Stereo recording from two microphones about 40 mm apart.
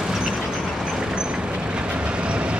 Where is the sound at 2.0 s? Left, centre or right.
Right.